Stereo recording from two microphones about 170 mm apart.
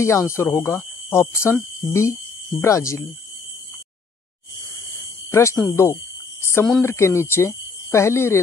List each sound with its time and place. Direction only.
0.0 s speech: 15° left (ahead or behind)
5.3 s speech: 15° left (ahead or behind)
6.4 s cricket: 15° left (ahead or behind)
6.8 s speech: 15° left (ahead or behind)